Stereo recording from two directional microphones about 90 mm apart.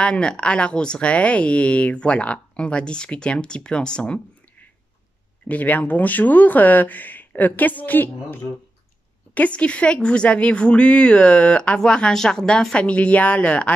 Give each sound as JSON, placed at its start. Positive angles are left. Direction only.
{"t": 0.0, "sound": "speech", "side_deg": 10}
{"t": 5.5, "sound": "speech", "side_deg": 15}